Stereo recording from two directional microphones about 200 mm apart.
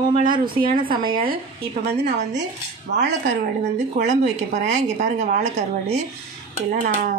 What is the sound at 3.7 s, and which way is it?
A woman's voice, 35° right (ahead or behind).